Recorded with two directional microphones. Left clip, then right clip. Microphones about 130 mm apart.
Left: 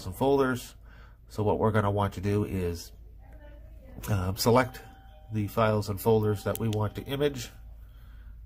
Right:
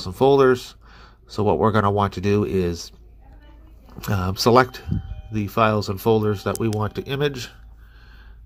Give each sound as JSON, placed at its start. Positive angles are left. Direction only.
{"t": 0.0, "sound": "speech", "side_deg": -30}
{"t": 4.0, "sound": "speech", "side_deg": -30}